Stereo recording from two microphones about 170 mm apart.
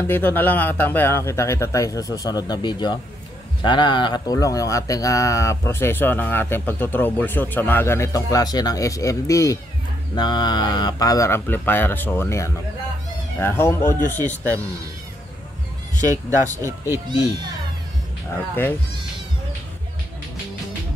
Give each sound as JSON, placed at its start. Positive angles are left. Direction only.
{"t": 0.0, "sound": "speech", "side_deg": 10}
{"t": 16.0, "sound": "speech", "side_deg": -20}
{"t": 18.3, "sound": "speech", "side_deg": 10}